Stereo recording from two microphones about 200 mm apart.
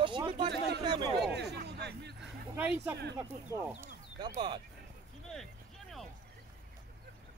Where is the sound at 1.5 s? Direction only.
55° right (ahead or behind).